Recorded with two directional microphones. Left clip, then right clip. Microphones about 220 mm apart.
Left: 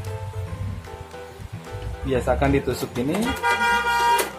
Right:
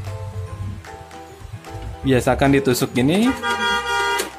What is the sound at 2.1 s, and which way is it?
Speech, 45° right (ahead or behind).